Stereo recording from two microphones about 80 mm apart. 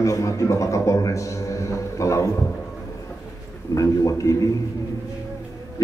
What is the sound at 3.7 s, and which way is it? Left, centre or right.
Speech, left.